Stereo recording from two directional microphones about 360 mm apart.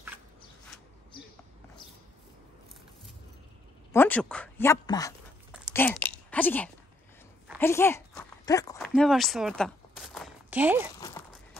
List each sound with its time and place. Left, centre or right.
3.9 s speech: centre
5.5 s a sound: centre
11.0 s walk: centre